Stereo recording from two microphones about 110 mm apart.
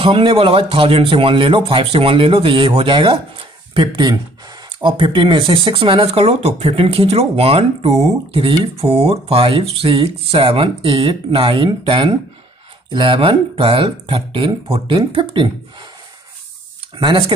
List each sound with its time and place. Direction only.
0.0 s speech: 50° right (ahead or behind)
3.8 s speech: 40° right (ahead or behind)